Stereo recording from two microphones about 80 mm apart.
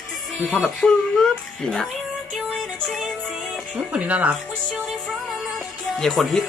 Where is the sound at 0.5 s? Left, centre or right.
Centre.